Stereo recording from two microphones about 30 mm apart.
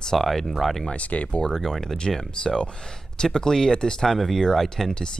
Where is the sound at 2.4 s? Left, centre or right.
Left.